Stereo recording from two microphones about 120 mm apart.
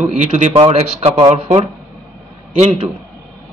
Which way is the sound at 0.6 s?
55° right (ahead or behind).